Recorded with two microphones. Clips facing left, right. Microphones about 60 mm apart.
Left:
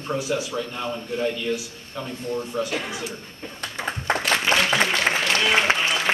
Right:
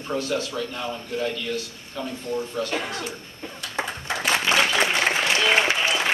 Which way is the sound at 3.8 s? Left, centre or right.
Right.